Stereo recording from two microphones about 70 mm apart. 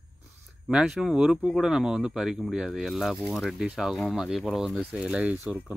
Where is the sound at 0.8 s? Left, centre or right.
Centre.